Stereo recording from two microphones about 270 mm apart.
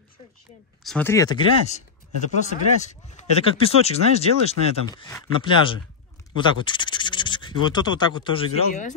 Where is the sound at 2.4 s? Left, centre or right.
Left.